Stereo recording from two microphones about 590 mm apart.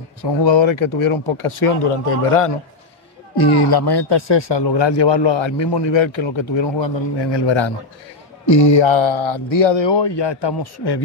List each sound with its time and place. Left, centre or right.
0.2 s speech: left
3.3 s speech: left
8.7 s speech: left